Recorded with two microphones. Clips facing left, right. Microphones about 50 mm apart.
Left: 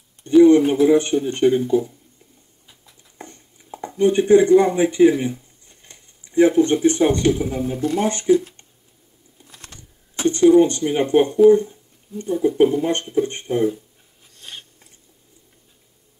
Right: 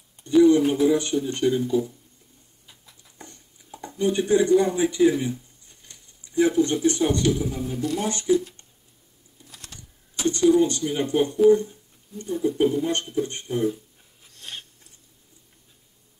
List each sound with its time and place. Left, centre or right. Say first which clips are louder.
0.4 s speech: left 5 dB; left
3.2 s speech: left 6 dB; left
9.4 s typing: left 2 dB; left
11.5 s speech: left 4 dB; left
14.3 s filing: even; centre